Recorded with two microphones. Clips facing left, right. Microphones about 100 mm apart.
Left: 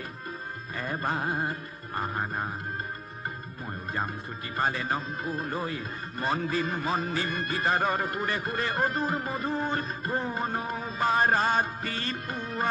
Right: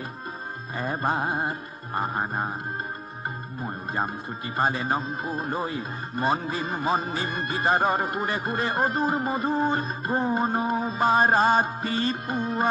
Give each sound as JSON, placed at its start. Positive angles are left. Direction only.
{"t": 0.7, "sound": "speech", "side_deg": -25}
{"t": 3.6, "sound": "speech", "side_deg": -25}